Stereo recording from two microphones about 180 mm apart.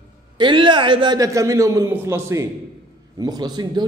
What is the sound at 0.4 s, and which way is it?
A man's voice, 25° right (ahead or behind).